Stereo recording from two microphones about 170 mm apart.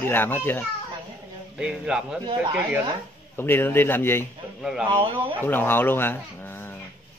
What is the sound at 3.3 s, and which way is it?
Speech, 10° left (ahead or behind).